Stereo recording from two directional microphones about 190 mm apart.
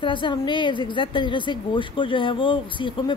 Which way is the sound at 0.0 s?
25° left (ahead or behind).